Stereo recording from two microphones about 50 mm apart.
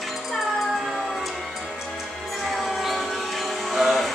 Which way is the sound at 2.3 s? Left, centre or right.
Centre.